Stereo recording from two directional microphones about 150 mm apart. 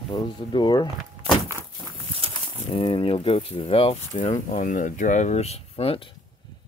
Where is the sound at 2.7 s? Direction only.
35° left (ahead or behind).